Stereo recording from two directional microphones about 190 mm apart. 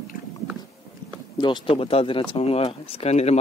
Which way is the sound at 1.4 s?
25° left (ahead or behind).